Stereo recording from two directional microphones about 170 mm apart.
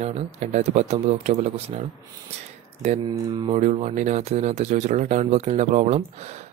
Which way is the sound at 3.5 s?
45° right (ahead or behind).